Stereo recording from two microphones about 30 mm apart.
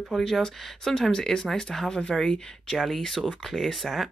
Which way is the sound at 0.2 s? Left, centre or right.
Centre.